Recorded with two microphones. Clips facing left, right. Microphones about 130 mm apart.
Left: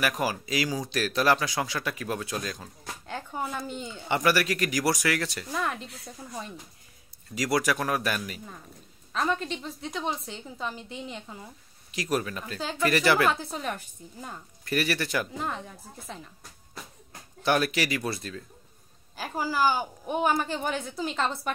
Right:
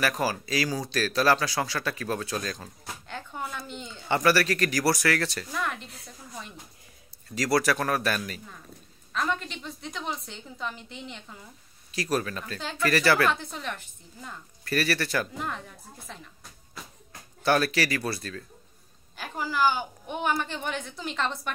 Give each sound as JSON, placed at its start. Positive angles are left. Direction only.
{"t": 0.0, "sound": "speech", "side_deg": 15}
{"t": 3.1, "sound": "a sound", "side_deg": 35}
{"t": 3.8, "sound": "speech", "side_deg": 15}
{"t": 5.5, "sound": "speech", "side_deg": 30}
{"t": 7.3, "sound": "speech", "side_deg": 15}
{"t": 9.1, "sound": "speech", "side_deg": 35}
{"t": 11.9, "sound": "speech", "side_deg": 20}
{"t": 13.5, "sound": "speech", "side_deg": 40}
{"t": 14.6, "sound": "speech", "side_deg": 15}
{"t": 15.3, "sound": "speech", "side_deg": 30}
{"t": 17.4, "sound": "speech", "side_deg": 15}
{"t": 19.1, "sound": "speech", "side_deg": 40}